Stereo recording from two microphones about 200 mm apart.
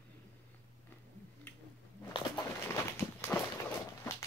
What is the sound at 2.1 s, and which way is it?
Walk, 20° left (ahead or behind).